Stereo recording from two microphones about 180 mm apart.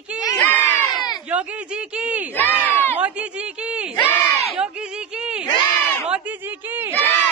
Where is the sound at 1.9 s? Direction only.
5° right (ahead or behind).